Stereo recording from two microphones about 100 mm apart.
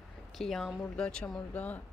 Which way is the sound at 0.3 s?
5° left (ahead or behind).